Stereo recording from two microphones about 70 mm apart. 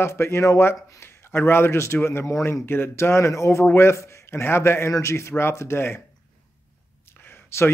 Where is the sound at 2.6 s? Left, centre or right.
Left.